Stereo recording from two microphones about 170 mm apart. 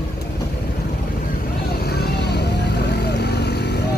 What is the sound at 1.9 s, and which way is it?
Vehicle, 70° left (ahead or behind).